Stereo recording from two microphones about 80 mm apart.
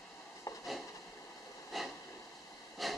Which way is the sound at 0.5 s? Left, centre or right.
Left.